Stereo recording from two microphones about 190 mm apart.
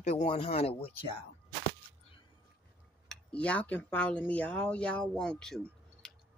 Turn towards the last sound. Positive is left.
turn(degrees=5)  # may be behind; listen again after turning